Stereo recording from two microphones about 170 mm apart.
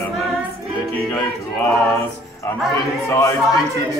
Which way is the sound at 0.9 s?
10° left (ahead or behind).